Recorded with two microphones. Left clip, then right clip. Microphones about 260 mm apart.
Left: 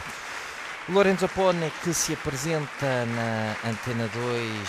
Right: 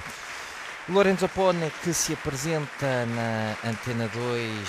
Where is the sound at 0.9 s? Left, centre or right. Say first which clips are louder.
Even; centre.